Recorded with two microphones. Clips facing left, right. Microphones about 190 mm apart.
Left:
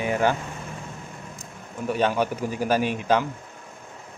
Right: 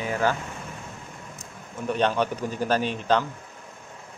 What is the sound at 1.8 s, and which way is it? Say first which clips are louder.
A man's voice: left 1 dB; 5° left (ahead or behind).